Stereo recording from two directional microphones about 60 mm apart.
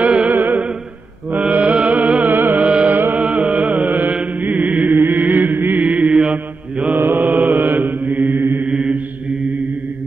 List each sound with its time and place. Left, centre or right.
0.0 s music: centre
0.3 s music: right
2.6 s music: right
4.9 s chant: right
5.9 s mantra: right
7.0 s mantra: right
8.6 s mantra: centre